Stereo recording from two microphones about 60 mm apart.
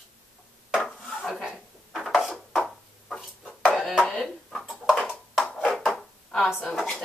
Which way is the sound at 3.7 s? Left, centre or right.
Centre.